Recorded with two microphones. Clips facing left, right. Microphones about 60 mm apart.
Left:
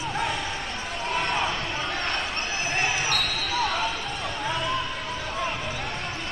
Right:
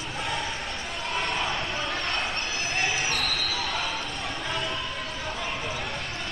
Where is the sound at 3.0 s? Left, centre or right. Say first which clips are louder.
Left 1 dB; left.